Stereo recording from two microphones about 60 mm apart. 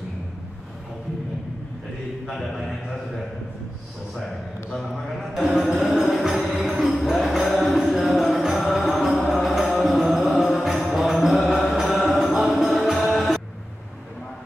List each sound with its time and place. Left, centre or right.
4.7 s a man's voice: centre
5.6 s music: centre